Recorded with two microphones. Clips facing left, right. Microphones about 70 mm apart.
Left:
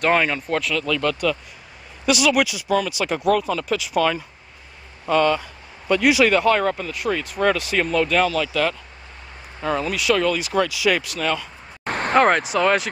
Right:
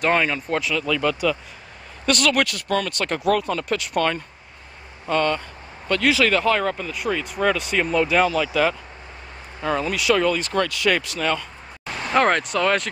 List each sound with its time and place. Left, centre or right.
0.0 s speech: centre
2.0 s speech: centre
11.8 s a sound: left
12.2 s speech: centre